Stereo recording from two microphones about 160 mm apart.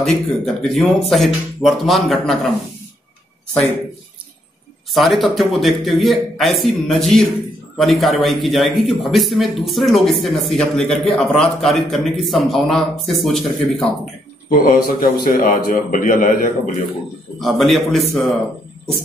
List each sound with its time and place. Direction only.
0.0 s a man's voice: centre (ahead or behind)
4.9 s a man's voice: centre (ahead or behind)
14.5 s a man's voice: 65° left (ahead or behind)
17.4 s a man's voice: centre (ahead or behind)